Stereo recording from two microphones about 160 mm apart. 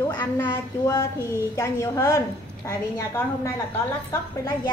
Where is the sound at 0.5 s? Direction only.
20° left (ahead or behind).